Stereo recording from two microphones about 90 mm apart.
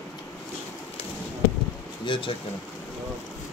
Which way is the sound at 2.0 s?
70° left (ahead or behind).